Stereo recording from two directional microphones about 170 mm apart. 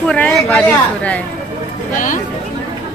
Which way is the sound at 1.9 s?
50° left (ahead or behind).